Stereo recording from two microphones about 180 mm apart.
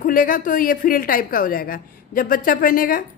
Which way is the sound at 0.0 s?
50° left (ahead or behind).